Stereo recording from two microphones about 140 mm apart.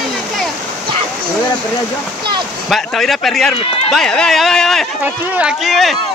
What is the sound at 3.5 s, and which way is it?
Speech, 40° left (ahead or behind).